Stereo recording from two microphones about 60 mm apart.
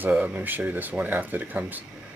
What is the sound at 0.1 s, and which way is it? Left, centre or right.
Speech, right.